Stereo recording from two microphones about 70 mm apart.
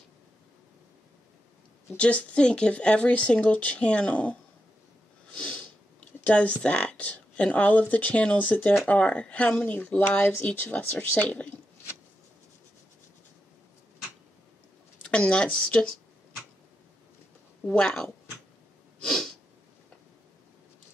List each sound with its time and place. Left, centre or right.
2.0 s speech: centre
5.4 s speech: centre
15.0 s speech: centre
17.6 s speech: centre
19.0 s sneeze: centre